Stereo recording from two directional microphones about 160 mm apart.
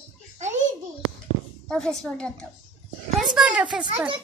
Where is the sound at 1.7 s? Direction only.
5° left (ahead or behind).